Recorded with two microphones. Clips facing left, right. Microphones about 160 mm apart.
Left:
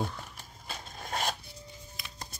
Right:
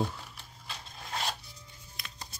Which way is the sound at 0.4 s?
45° left (ahead or behind).